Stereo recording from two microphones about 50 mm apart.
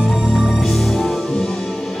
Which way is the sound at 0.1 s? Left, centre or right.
Centre.